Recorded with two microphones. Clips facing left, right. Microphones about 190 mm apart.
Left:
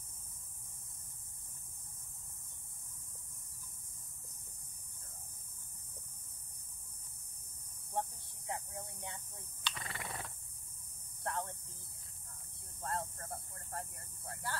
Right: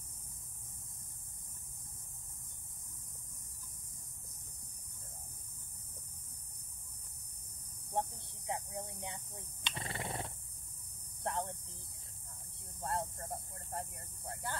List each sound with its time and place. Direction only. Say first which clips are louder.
8.5 s a sound: right 3 dB; 20° right (ahead or behind)
11.2 s hum: right 2 dB; 20° right (ahead or behind)
12.8 s speech: right 2 dB; 15° right (ahead or behind)